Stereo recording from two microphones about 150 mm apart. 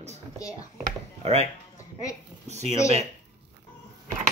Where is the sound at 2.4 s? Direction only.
50° right (ahead or behind).